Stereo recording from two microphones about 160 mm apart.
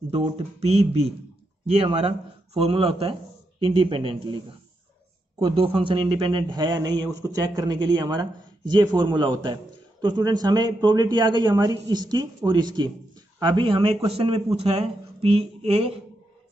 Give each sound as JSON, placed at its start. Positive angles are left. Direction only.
{"t": 0.1, "sound": "speech", "side_deg": -40}